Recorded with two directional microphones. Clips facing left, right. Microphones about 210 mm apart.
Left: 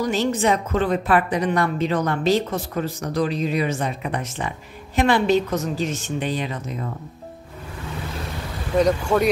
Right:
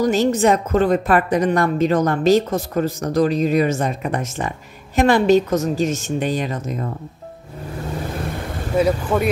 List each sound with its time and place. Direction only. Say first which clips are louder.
0.0 s a woman's voice: right 5 dB; 45° right (ahead or behind)
8.7 s speech: even; 5° right (ahead or behind)